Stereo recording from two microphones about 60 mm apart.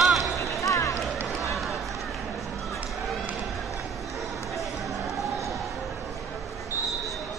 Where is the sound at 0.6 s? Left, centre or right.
Left.